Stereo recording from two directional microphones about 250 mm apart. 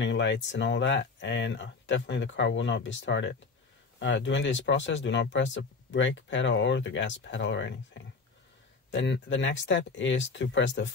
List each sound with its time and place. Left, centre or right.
0.0 s speech: left